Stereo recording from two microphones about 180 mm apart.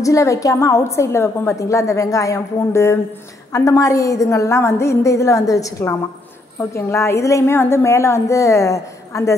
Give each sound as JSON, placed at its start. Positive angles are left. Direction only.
{"t": 0.0, "sound": "a woman's voice", "side_deg": 15}